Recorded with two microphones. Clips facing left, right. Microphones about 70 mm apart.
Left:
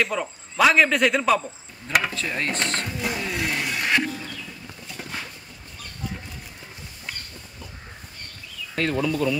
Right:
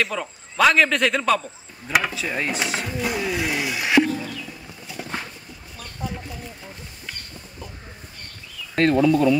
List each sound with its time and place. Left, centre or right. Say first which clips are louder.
0.0 s a man's voice: even; centre
8.7 s speech: right 6 dB; right
9.0 s speech: right 7 dB; right